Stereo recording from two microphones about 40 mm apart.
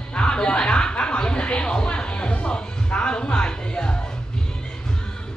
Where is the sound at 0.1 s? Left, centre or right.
Left.